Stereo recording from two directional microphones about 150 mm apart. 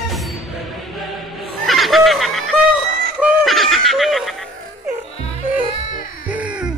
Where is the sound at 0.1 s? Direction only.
Centre (ahead or behind).